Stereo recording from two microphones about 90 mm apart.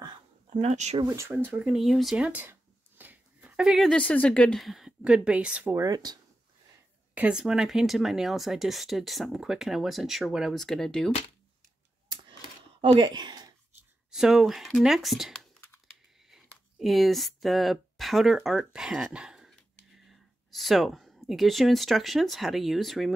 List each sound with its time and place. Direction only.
1.3 s speech: 20° right (ahead or behind)
1.7 s speech: centre (ahead or behind)
2.1 s speech: 15° right (ahead or behind)
3.0 s a sound: 15° right (ahead or behind)
3.9 s speech: 15° left (ahead or behind)
4.6 s speech: 5° right (ahead or behind)
5.8 s speech: 45° right (ahead or behind)
7.2 s speech: 10° right (ahead or behind); by 11.1 s 5° left (ahead or behind)
13.0 s speech: 55° right (ahead or behind)
14.1 s speech: 5° right (ahead or behind)